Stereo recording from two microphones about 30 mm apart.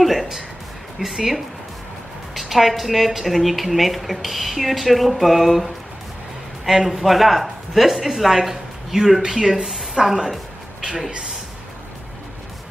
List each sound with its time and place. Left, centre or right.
0.0 s music: centre
0.9 s a woman's voice: centre; by 10.1 s right